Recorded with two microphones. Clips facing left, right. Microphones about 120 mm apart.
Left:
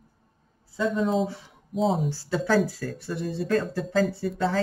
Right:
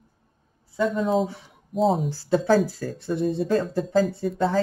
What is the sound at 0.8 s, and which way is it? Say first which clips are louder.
Speech: right 1 dB; centre (ahead or behind).